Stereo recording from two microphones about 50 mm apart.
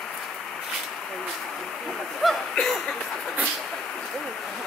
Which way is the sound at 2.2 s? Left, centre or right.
Centre.